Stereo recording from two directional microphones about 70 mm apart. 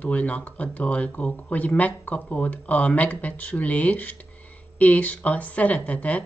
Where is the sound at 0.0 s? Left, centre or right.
Left.